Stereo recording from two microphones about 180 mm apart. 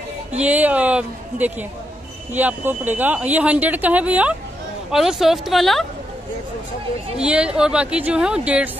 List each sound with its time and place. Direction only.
0.4 s speech: 10° right (ahead or behind)
7.2 s speech: 5° right (ahead or behind)